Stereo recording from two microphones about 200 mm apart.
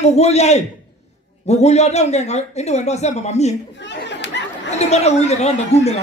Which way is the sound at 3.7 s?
60° left (ahead or behind).